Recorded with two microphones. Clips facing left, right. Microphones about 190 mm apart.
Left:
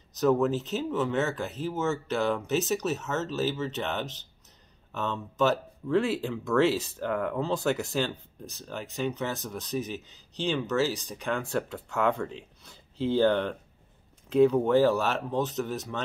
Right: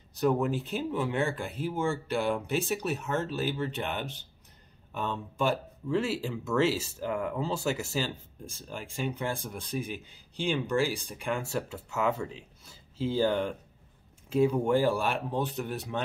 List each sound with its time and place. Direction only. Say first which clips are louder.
0.3 s speech: left 5 dB; 10° right (ahead or behind)